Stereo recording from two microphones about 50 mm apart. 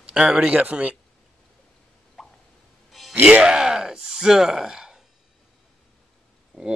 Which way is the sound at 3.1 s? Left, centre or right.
Centre.